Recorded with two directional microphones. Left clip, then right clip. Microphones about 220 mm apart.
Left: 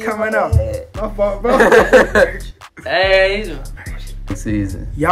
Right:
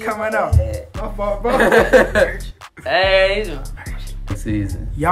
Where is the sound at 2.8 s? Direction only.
25° right (ahead or behind).